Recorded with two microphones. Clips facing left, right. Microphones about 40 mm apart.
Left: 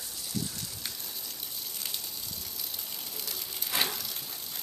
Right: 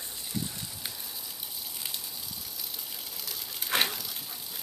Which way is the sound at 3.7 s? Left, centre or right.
Right.